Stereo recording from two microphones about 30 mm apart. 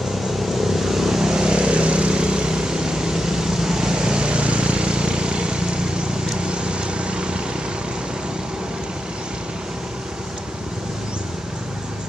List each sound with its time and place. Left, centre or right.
0.5 s vehicle: centre; by 7.4 s right